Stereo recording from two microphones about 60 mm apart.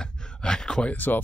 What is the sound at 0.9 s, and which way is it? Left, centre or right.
Speech, left.